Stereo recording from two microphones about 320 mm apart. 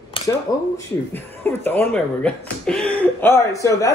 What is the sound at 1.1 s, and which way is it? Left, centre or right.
Speech, centre.